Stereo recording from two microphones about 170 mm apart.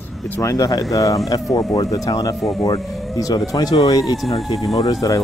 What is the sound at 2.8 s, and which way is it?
Vehicle, centre (ahead or behind).